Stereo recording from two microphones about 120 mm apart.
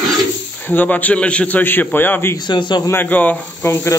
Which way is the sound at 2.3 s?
40° left (ahead or behind).